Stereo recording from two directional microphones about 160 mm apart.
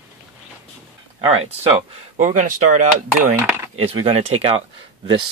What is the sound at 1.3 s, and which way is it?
Speech, 40° right (ahead or behind).